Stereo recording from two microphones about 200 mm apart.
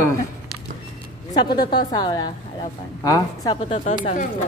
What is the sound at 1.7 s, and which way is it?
A woman's voice, 20° left (ahead or behind).